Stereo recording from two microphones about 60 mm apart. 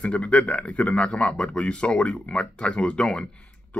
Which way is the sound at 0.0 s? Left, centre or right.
Left.